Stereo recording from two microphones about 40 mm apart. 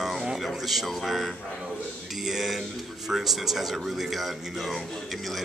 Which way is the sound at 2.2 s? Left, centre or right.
Centre.